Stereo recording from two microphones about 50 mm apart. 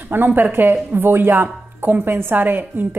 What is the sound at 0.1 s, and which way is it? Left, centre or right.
A woman's voice, right.